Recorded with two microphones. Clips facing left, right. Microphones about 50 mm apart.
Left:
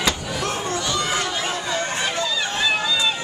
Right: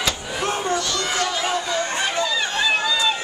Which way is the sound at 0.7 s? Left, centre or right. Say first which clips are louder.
Even; centre.